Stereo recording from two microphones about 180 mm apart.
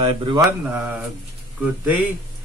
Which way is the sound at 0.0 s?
25° right (ahead or behind).